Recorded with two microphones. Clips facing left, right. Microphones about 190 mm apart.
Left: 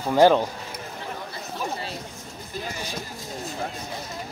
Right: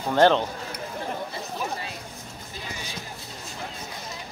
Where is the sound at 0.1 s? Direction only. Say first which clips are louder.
Left 2 dB; 10° left (ahead or behind).